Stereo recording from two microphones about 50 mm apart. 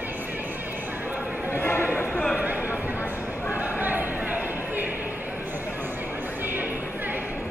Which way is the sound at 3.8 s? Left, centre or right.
Right.